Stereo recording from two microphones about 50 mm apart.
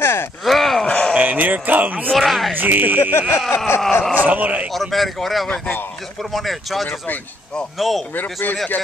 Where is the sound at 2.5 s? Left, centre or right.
Right.